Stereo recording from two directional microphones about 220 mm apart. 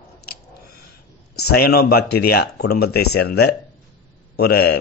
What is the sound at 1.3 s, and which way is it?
Speech, 45° left (ahead or behind).